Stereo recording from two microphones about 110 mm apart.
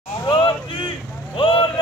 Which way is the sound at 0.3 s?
50° left (ahead or behind).